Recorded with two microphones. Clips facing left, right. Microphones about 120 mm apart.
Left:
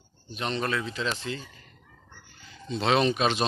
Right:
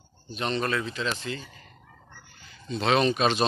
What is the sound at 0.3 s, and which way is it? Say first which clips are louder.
Speech: right 2 dB; 10° left (ahead or behind).